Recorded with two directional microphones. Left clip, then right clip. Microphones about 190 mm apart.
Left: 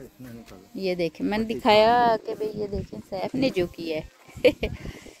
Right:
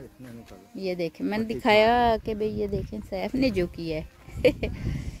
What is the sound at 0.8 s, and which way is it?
Speech, 10° left (ahead or behind).